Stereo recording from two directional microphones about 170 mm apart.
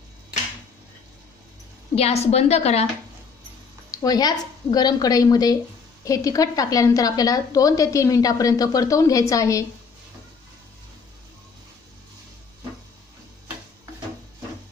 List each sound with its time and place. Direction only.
2.0 s a woman's voice: 40° left (ahead or behind)
4.0 s a woman's voice: 20° left (ahead or behind)